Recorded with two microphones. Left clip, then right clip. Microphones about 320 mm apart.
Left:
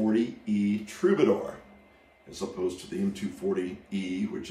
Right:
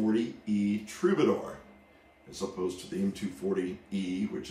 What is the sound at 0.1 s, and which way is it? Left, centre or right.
Speech, centre.